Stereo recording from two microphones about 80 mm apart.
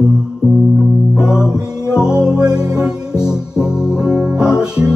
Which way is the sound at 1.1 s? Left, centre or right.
Centre.